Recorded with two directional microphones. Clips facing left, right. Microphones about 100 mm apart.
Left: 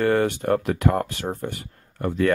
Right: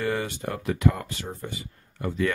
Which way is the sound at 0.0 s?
55° left (ahead or behind).